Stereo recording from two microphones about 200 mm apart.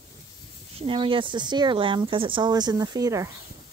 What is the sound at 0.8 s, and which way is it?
Speech, 25° right (ahead or behind).